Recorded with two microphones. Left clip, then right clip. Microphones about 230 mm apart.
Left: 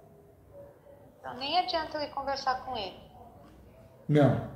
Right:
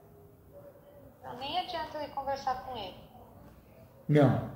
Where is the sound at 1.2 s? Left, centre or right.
Left.